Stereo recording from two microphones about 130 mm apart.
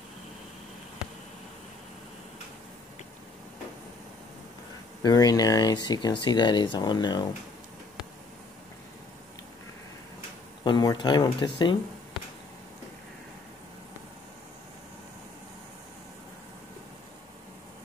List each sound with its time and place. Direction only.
5.0 s speech: 30° left (ahead or behind)
10.6 s speech: 35° left (ahead or behind)